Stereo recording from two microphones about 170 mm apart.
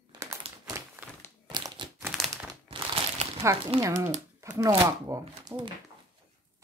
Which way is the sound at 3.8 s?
15° right (ahead or behind).